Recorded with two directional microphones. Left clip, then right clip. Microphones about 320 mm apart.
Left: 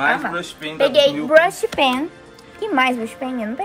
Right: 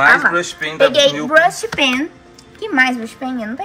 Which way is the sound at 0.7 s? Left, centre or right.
Left.